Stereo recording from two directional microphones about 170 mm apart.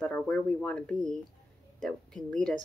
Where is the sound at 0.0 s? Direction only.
5° left (ahead or behind).